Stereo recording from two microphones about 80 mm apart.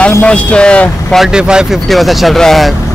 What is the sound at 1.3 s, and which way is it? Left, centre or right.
Speech, centre.